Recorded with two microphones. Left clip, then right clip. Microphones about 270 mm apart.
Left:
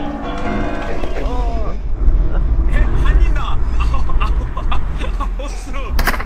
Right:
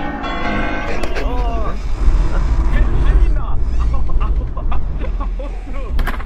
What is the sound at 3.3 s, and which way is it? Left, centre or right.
Vehicle, left.